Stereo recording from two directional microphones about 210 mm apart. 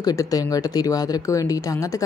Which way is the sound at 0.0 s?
15° left (ahead or behind).